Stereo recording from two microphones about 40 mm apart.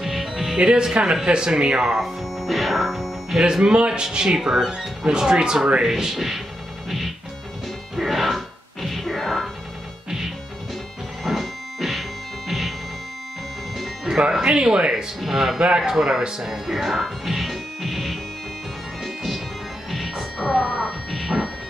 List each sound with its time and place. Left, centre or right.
0.0 s music: centre
0.6 s speech: right
2.0 s music: centre
3.3 s speech: centre
5.0 s speech: centre
7.9 s music: centre
11.2 s music: centre
14.0 s speech: centre
15.1 s speech: centre
15.6 s speech: centre
19.9 s music: centre